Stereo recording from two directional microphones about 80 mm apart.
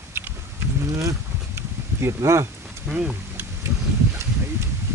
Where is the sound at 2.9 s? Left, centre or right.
Right.